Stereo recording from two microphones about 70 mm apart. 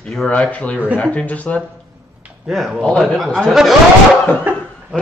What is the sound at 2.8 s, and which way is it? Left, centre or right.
Speech, centre.